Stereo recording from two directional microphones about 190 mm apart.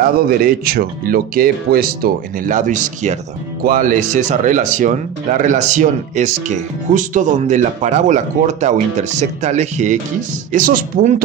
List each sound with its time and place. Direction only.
0.0 s speech: 50° right (ahead or behind)